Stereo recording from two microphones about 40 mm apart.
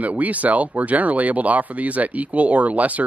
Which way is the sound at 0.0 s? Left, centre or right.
Right.